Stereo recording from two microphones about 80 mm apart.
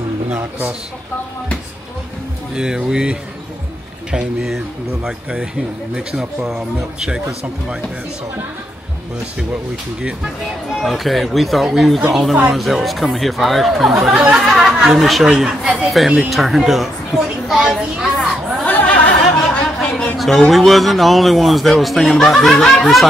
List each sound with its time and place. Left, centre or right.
2.5 s speech: centre
10.7 s a man's voice: centre
18.7 s a sound: centre
20.2 s a man's voice: centre